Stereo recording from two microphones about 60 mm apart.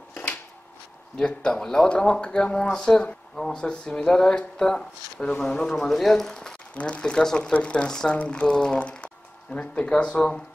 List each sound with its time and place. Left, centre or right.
0.1 s a sound: left
1.1 s speech: centre
3.6 s speech: centre
6.7 s speech: left